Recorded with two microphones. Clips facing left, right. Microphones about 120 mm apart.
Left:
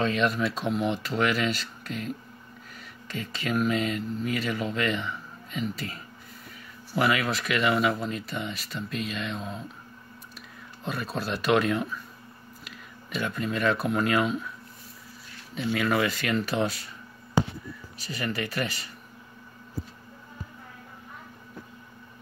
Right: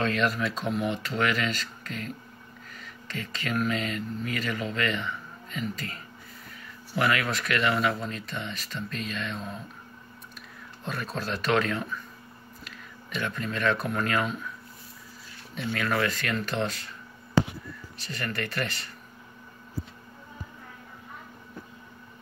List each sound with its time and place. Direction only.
0.0 s speech: 5° left (ahead or behind)
10.8 s speech: 5° left (ahead or behind)
15.5 s speech: 10° left (ahead or behind)